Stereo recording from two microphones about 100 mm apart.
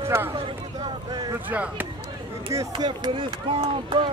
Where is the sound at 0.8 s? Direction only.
40° right (ahead or behind).